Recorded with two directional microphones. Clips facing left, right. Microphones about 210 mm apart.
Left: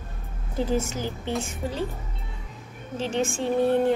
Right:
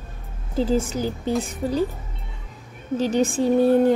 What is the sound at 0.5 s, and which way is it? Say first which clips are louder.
Speech: right 4 dB; 30° right (ahead or behind).